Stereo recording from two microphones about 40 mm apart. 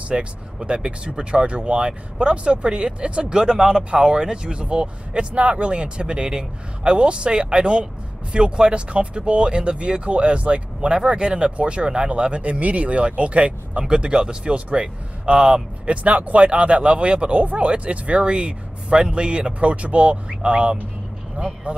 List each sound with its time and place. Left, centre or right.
0.1 s speech: right